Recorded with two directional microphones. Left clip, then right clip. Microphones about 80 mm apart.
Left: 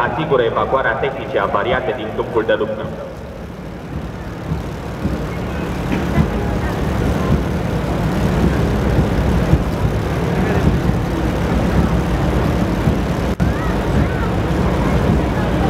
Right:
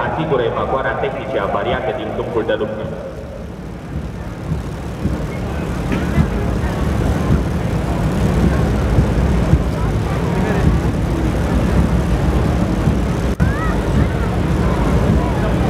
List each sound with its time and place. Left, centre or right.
0.2 s speech: left
5.9 s vehicle: left